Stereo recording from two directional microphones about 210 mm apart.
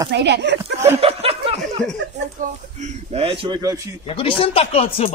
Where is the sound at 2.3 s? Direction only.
35° right (ahead or behind); by 3.9 s 15° right (ahead or behind).